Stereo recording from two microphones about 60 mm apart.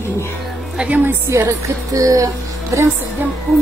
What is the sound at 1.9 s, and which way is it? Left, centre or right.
Speech, right.